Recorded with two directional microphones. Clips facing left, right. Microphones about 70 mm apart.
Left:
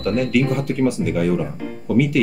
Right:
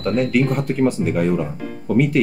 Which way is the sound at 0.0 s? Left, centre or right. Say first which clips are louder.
Right 1 dB; right.